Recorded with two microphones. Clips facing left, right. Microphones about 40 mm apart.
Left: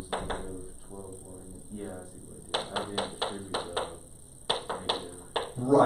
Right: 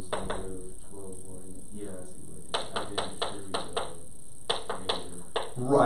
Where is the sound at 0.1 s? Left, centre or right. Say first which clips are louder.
Right 1 dB; centre.